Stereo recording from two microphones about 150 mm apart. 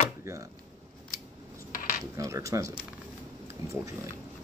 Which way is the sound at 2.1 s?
20° right (ahead or behind).